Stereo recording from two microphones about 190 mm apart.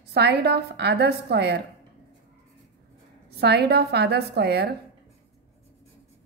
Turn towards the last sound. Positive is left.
turn(degrees=-60)  # may be behind; listen again after turning